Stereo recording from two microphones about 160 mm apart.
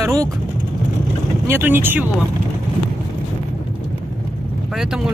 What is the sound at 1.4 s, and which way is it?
Speech, 15° right (ahead or behind).